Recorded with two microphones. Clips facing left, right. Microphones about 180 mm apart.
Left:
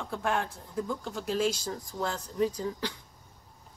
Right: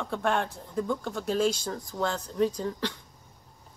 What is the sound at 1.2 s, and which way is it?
A woman's voice, 5° left (ahead or behind).